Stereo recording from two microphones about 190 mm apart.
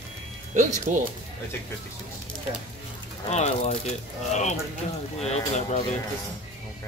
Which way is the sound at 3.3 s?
35° left (ahead or behind).